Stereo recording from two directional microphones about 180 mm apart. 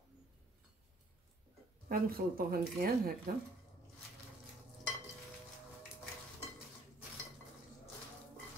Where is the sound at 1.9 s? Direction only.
55° right (ahead or behind).